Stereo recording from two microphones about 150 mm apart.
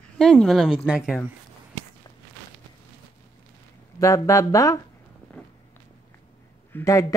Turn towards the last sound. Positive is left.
turn(degrees=20)  # may be behind; listen again after turning